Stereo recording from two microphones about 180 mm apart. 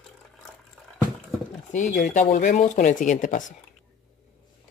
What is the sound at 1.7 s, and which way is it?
Speech, 45° left (ahead or behind).